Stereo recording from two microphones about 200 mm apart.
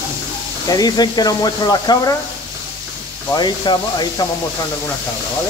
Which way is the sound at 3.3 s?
20° left (ahead or behind).